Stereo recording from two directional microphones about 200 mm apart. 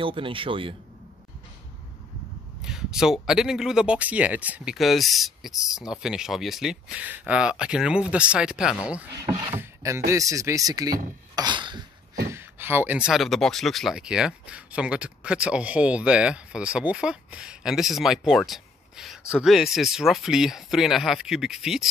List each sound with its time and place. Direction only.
0.0 s speech: 25° right (ahead or behind)
2.6 s speech: 5° right (ahead or behind); by 11.8 s 20° right (ahead or behind)
12.3 s speech: 10° right (ahead or behind)